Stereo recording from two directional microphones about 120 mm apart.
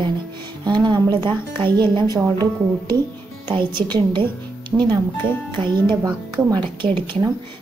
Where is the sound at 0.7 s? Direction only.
35° right (ahead or behind).